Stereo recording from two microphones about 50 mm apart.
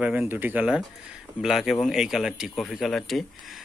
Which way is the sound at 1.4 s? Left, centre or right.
Centre.